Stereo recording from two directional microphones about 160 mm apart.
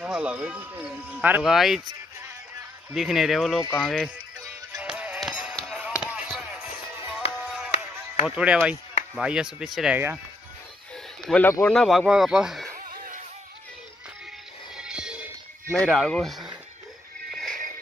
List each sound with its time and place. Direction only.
0.0 s speech: 5° right (ahead or behind)
2.9 s speech: centre (ahead or behind)
4.7 s music: 5° right (ahead or behind)
8.4 s speech: 5° right (ahead or behind)
11.2 s speech: 5° left (ahead or behind)
12.7 s a sound: 60° right (ahead or behind)
14.8 s music: 5° right (ahead or behind)
15.8 s speech: centre (ahead or behind)
17.3 s music: centre (ahead or behind)